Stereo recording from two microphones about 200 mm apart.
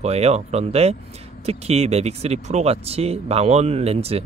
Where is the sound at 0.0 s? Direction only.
30° right (ahead or behind).